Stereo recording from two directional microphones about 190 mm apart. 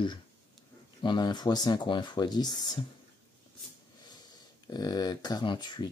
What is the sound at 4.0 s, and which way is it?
Speech, 20° left (ahead or behind).